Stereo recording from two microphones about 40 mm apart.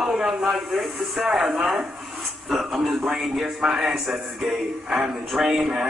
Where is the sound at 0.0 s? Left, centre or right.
Centre.